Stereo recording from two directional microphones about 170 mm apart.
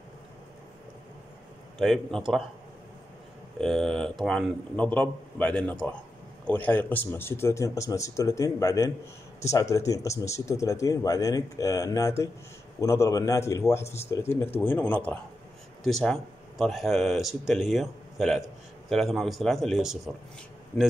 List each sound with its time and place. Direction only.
1.8 s a man's voice: centre (ahead or behind)
3.6 s a man's voice: centre (ahead or behind)